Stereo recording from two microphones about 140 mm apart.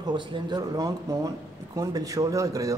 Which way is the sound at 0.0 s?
30° right (ahead or behind).